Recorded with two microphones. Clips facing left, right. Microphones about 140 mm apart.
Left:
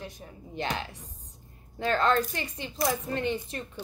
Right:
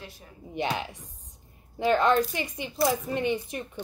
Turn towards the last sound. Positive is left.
turn(degrees=-15)  # may be behind; listen again after turning